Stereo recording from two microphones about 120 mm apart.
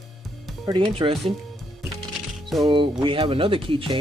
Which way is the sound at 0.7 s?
45° right (ahead or behind).